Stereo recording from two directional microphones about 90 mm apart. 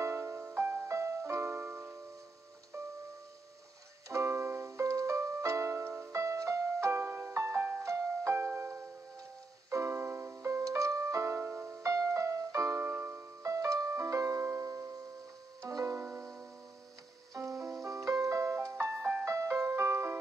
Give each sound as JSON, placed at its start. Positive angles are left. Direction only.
{"t": 0.0, "sound": "music", "side_deg": -25}
{"t": 4.1, "sound": "music", "side_deg": -30}
{"t": 8.5, "sound": "music", "side_deg": -20}
{"t": 9.7, "sound": "music", "side_deg": -30}
{"t": 12.8, "sound": "music", "side_deg": -20}
{"t": 13.4, "sound": "music", "side_deg": -35}
{"t": 16.0, "sound": "music", "side_deg": -25}
{"t": 17.3, "sound": "music", "side_deg": -40}